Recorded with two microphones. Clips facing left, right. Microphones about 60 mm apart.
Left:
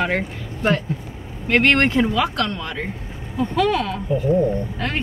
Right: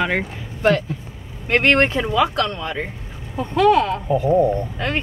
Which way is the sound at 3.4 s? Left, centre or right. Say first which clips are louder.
Right 4 dB; centre.